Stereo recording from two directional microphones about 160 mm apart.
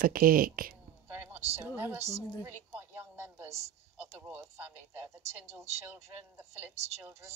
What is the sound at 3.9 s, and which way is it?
Speech, 10° right (ahead or behind).